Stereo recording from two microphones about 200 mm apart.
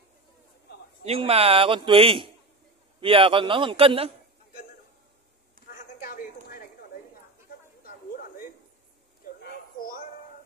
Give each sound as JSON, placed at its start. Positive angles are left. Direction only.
{"t": 1.0, "sound": "speech", "side_deg": -30}
{"t": 5.7, "sound": "clip-clop", "side_deg": 45}
{"t": 9.4, "sound": "a sound", "side_deg": 45}